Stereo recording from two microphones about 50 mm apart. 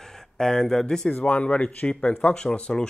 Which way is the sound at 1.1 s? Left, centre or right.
Left.